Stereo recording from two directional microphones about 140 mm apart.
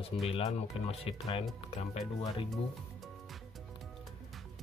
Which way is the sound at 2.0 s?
55° left (ahead or behind).